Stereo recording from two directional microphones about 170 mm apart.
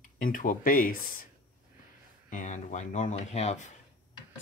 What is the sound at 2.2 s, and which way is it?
Speech, 50° left (ahead or behind).